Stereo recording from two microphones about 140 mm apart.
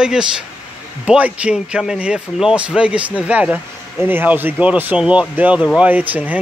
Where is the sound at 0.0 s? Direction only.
5° right (ahead or behind).